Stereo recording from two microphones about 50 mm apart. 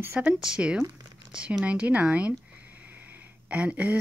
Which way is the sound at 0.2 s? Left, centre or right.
Centre.